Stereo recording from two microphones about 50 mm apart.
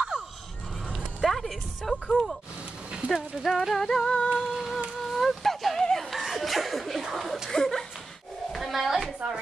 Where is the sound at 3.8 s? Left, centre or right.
Centre.